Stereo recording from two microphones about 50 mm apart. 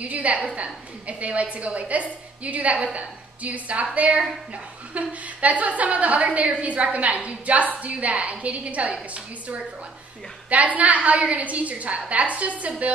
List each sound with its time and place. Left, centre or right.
0.0 s a woman's voice: right
10.5 s a woman's voice: right